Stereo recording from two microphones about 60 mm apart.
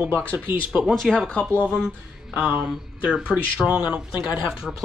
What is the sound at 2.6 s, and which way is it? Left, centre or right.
Speech, centre.